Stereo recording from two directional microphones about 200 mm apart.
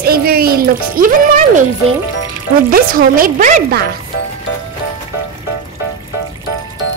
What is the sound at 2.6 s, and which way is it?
Speech, 45° right (ahead or behind).